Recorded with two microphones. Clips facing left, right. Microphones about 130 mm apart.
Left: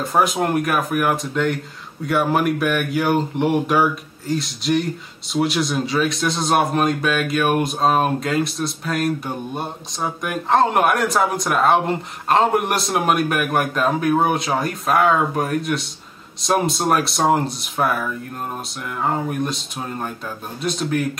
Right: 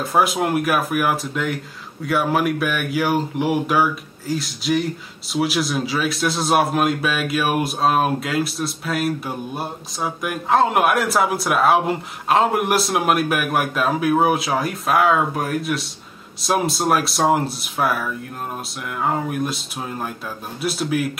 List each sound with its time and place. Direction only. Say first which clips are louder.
0.0 s a man's voice: even; centre (ahead or behind)